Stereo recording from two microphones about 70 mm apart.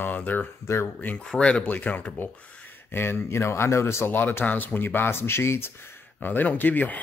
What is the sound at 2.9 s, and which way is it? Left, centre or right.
Speech, left.